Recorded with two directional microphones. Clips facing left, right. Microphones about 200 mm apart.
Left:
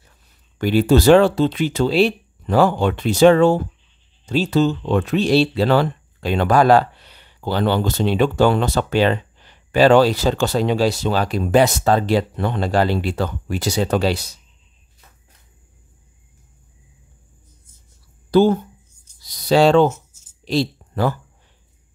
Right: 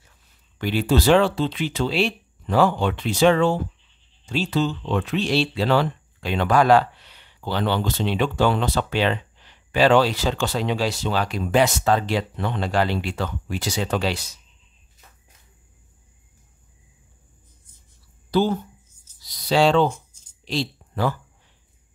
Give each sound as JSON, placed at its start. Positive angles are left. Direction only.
{"t": 0.6, "sound": "speech", "side_deg": 45}
{"t": 18.3, "sound": "speech", "side_deg": 50}